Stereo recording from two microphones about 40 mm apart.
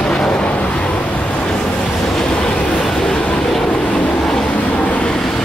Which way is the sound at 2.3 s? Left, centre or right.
Left.